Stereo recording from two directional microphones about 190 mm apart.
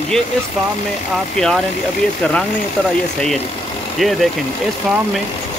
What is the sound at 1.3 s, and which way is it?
Speech, centre (ahead or behind).